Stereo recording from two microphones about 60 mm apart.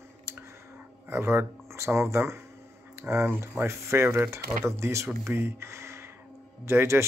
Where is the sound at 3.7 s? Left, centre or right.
Right.